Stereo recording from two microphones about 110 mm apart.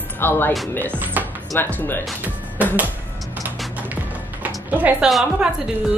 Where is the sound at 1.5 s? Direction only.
20° left (ahead or behind).